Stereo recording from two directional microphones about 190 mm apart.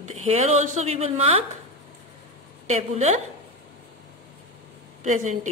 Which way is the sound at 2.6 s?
35° right (ahead or behind).